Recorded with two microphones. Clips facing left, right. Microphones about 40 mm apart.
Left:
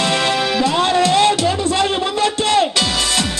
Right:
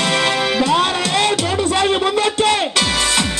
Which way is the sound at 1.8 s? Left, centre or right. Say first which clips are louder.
Right 1 dB; centre.